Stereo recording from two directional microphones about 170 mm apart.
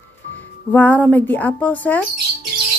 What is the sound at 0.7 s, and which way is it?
Speech, 10° left (ahead or behind).